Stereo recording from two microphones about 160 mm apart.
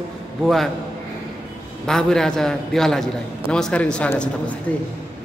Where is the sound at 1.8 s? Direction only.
5° left (ahead or behind).